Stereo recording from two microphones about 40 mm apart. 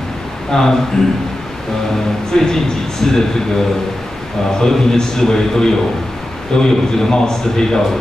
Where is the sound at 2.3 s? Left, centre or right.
Centre.